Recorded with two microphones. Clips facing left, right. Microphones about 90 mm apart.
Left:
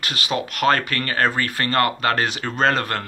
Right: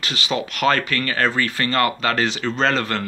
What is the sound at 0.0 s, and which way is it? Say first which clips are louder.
Speech: right 1 dB; 50° left (ahead or behind).